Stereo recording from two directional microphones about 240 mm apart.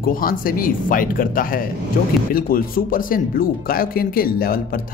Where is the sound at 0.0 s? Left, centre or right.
Left.